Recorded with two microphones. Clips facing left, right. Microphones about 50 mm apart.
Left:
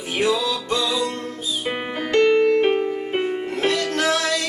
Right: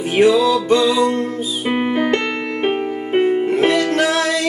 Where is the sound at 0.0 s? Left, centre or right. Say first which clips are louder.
Right 8 dB; right; by 2.0 s centre.